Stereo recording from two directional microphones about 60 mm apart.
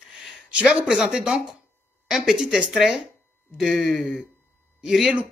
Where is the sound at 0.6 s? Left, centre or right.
Centre.